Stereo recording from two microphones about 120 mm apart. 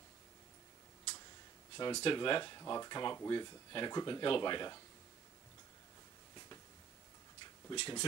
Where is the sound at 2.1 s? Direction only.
35° left (ahead or behind).